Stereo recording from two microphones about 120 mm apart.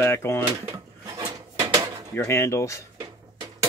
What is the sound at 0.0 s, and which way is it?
Speech, 20° left (ahead or behind).